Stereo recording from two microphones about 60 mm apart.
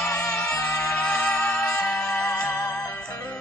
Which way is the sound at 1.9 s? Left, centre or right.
Left.